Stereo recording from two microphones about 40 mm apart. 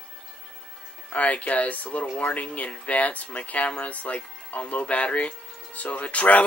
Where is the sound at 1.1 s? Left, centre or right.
Left.